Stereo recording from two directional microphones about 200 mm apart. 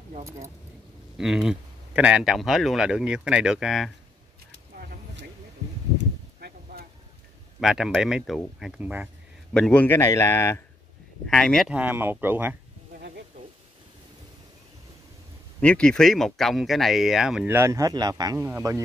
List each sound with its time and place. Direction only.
1.1 s speech: centre (ahead or behind)
4.5 s a sound: 60° right (ahead or behind)
5.9 s a sound: 50° right (ahead or behind)
7.6 s speech: centre (ahead or behind)
9.5 s a man's voice: 5° left (ahead or behind)
15.6 s speech: 5° left (ahead or behind); by 18.8 s 15° right (ahead or behind)